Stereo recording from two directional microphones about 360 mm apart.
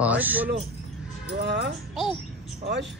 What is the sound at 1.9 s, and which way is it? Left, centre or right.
Speech, centre.